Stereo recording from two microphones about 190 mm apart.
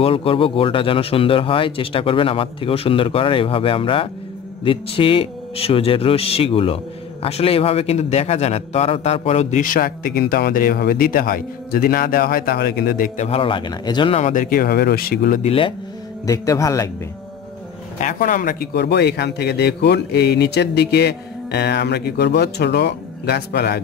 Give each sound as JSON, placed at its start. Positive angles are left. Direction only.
{"t": 0.0, "sound": "speech", "side_deg": 30}
{"t": 13.3, "sound": "speech", "side_deg": 25}
{"t": 14.2, "sound": "speech", "side_deg": 45}
{"t": 15.4, "sound": "speech", "side_deg": 30}
{"t": 16.3, "sound": "speech", "side_deg": 15}
{"t": 18.0, "sound": "speech", "side_deg": 45}